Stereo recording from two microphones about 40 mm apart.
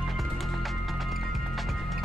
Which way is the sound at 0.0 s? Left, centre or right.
Centre.